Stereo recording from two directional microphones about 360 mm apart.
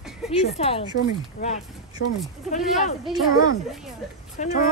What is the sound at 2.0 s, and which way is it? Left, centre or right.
Speech, left.